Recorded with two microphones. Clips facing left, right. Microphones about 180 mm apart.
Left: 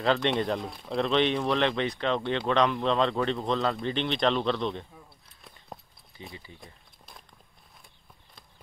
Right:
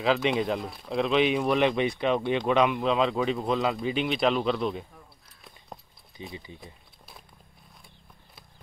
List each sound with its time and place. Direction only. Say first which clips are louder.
0.0 s speech: right 1 dB; centre (ahead or behind)
4.9 s keys jangling: left 1 dB; centre (ahead or behind)
6.3 s speech: right 4 dB; 20° right (ahead or behind)
6.6 s a sound: right 3 dB; 5° right (ahead or behind)